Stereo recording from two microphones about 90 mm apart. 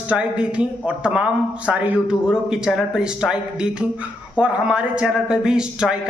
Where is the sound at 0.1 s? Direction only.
10° right (ahead or behind).